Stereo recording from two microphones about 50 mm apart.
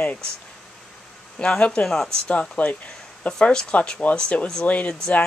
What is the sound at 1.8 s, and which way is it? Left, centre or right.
Speech, centre.